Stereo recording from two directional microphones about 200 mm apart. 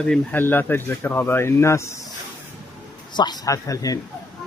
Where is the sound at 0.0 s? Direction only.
5° left (ahead or behind).